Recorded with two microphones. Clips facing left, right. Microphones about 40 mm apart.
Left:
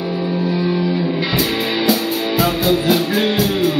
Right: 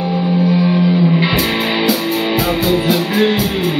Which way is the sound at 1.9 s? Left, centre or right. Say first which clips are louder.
Right 2 dB; centre.